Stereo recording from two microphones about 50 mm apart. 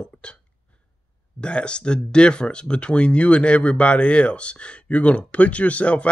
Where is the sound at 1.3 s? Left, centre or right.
Left.